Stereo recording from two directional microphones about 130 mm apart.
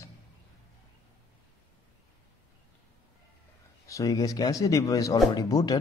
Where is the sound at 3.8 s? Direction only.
25° left (ahead or behind).